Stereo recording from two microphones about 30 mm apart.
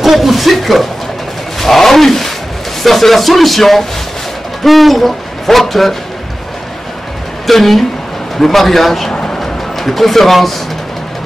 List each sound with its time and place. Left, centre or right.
0.0 s speech: centre
1.6 s roaring cats: centre
2.8 s speech: centre
7.4 s a man's voice: centre
9.1 s music: left
9.4 s music: centre